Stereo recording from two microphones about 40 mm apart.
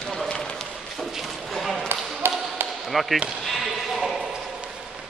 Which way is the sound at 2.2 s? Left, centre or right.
Right.